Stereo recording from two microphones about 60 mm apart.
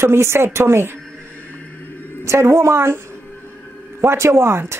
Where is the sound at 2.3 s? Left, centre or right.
Right.